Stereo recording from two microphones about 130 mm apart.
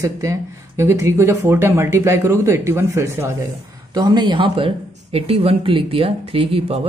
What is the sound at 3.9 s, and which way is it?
Speech, 30° right (ahead or behind).